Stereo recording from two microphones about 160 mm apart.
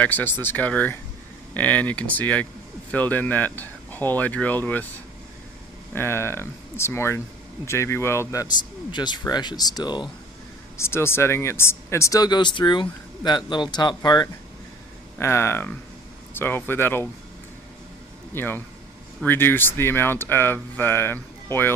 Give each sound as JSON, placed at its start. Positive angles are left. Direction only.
{"t": 0.0, "sound": "speech", "side_deg": 10}
{"t": 5.9, "sound": "speech", "side_deg": 15}
{"t": 10.8, "sound": "speech", "side_deg": 15}
{"t": 18.3, "sound": "speech", "side_deg": 10}